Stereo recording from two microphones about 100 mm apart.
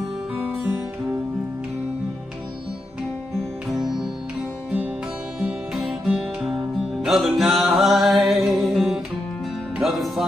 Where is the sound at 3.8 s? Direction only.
45° right (ahead or behind).